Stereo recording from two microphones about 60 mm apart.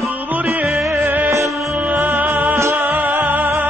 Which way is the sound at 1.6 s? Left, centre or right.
Right.